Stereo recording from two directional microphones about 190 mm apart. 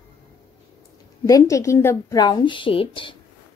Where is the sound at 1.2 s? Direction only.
15° left (ahead or behind).